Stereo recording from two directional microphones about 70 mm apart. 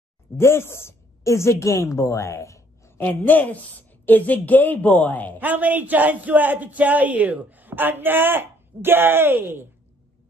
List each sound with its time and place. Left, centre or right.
0.4 s a woman's voice: left
3.0 s a woman's voice: left
5.4 s a man's voice: right